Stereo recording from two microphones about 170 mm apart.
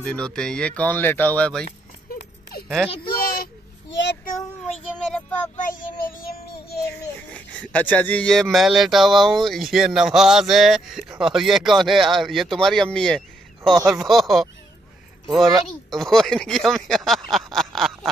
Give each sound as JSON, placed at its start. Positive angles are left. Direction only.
{"t": 0.0, "sound": "speech", "side_deg": 5}
{"t": 2.5, "sound": "a sound", "side_deg": 65}
{"t": 5.6, "sound": "child singing", "side_deg": 55}
{"t": 7.3, "sound": "speech", "side_deg": 5}